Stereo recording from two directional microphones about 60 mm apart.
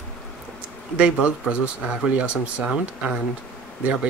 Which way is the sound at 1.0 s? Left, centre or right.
Centre.